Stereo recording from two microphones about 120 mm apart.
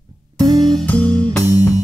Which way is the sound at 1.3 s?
30° left (ahead or behind).